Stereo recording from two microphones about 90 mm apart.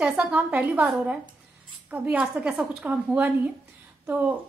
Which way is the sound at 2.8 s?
20° right (ahead or behind).